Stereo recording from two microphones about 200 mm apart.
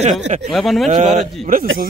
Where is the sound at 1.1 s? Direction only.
45° right (ahead or behind).